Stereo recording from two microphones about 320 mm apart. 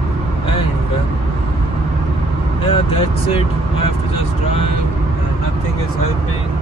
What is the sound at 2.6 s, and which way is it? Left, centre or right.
Speech, centre.